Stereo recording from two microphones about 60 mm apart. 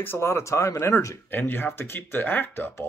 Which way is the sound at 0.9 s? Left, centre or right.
Left.